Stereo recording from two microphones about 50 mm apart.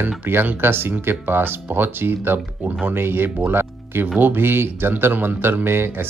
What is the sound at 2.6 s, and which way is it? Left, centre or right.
Speech, right.